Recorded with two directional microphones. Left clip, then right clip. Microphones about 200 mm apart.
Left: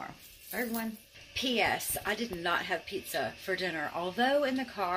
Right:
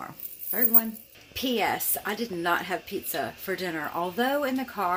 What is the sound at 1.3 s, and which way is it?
A woman's voice, 20° right (ahead or behind).